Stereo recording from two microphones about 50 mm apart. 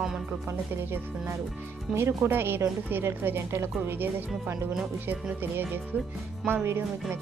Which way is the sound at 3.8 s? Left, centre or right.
Right.